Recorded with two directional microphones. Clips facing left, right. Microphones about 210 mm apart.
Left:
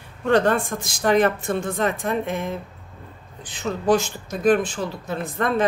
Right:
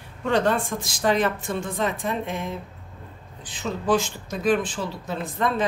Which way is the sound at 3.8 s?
45° left (ahead or behind).